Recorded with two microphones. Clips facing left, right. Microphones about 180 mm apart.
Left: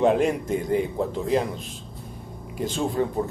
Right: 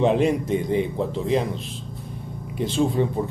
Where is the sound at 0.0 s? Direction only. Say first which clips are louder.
Right 1 dB; centre (ahead or behind).